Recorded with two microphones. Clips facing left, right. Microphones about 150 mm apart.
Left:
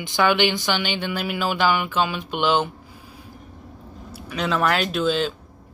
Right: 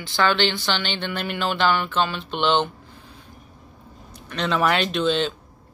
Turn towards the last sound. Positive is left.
turn(degrees=5)  # may be behind; listen again after turning